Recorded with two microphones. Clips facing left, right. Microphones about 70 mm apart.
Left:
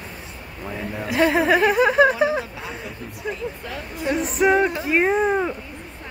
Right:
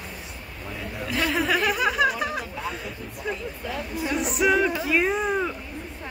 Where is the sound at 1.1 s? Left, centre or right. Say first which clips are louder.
Left 6 dB; left.